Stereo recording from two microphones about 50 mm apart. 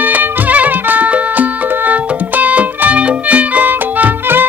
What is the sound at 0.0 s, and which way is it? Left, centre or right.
Music, right.